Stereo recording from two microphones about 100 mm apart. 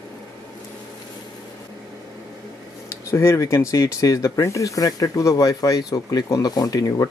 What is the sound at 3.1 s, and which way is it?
Speech, 30° left (ahead or behind).